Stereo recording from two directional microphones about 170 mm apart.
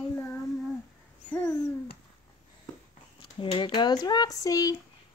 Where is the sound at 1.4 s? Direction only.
20° left (ahead or behind).